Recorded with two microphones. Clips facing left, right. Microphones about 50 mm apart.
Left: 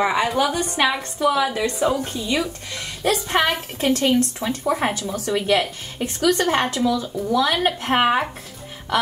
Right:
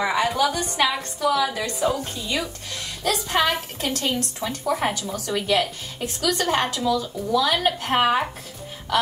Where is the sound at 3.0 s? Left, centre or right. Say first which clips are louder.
Left 2 dB; left.